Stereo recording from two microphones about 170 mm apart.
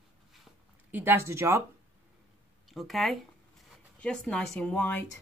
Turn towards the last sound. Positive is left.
turn(degrees=10)  # may be behind; listen again after turning